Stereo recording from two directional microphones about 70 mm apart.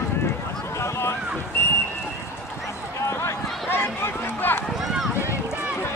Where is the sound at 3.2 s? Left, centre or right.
Left.